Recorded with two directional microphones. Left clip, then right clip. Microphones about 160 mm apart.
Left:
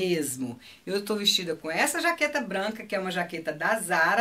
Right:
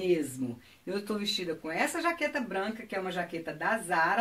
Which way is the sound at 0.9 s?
10° left (ahead or behind).